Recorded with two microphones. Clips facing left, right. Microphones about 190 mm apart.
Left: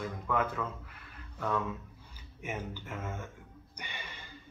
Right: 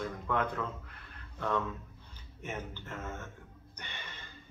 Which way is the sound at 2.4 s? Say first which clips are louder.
Left 2 dB; 10° left (ahead or behind).